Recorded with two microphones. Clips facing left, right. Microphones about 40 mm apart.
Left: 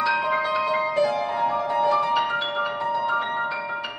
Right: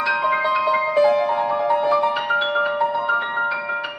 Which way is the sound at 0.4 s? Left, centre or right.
Centre.